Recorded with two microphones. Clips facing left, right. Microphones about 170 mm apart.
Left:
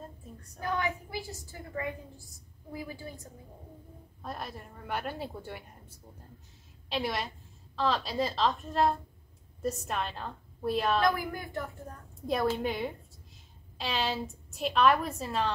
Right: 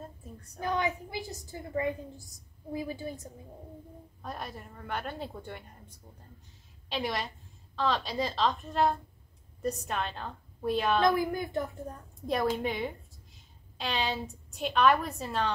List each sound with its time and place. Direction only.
0.6 s a woman's voice: 20° right (ahead or behind)
4.2 s a woman's voice: centre (ahead or behind)
11.0 s a woman's voice: 20° right (ahead or behind)
12.6 s a woman's voice: centre (ahead or behind)